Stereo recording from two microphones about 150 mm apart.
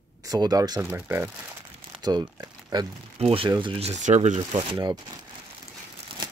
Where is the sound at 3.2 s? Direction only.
40° right (ahead or behind).